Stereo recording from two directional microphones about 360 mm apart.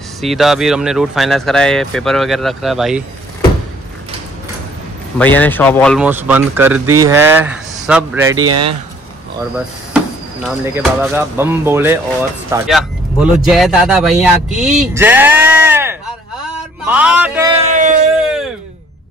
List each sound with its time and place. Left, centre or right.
0.2 s speech: centre
5.2 s speech: centre
8.4 s speech: right
10.6 s speech: centre
18.2 s speech: centre